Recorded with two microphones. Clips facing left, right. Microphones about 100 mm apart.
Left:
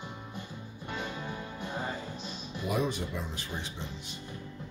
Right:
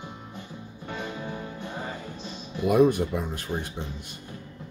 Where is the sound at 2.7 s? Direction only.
55° right (ahead or behind).